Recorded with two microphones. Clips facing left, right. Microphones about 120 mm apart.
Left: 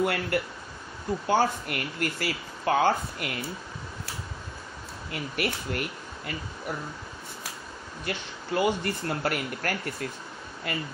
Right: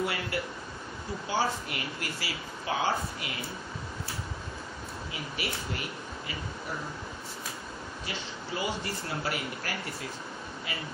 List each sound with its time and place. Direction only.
0.0 s speech: 55° left (ahead or behind)
5.1 s speech: 55° left (ahead or behind)
8.0 s speech: 55° left (ahead or behind)